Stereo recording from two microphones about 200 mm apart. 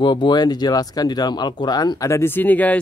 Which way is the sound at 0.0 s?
25° left (ahead or behind).